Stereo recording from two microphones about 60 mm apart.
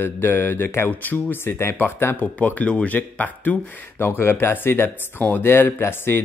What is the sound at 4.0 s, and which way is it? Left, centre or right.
Speech, left.